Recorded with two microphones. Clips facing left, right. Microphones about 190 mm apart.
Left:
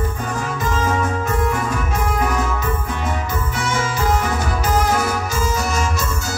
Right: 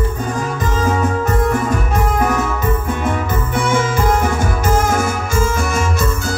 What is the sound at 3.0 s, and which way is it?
Music, 55° right (ahead or behind).